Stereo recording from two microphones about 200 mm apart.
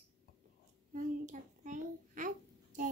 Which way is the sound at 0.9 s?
40° right (ahead or behind).